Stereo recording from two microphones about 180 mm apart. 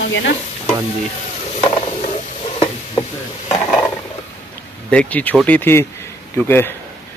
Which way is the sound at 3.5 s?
5° left (ahead or behind).